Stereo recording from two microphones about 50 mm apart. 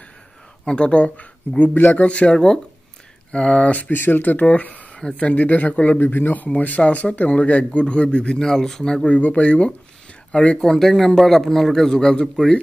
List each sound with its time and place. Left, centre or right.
0.7 s speech: centre
1.6 s speech: left
2.3 s a man's voice: centre
3.9 s speech: left
5.9 s a man's voice: left; by 9.1 s centre
9.1 s speech: left
10.6 s a man's voice: centre